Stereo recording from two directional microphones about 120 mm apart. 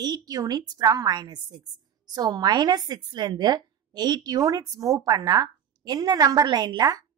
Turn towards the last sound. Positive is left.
turn(degrees=-35)  # may be behind; listen again after turning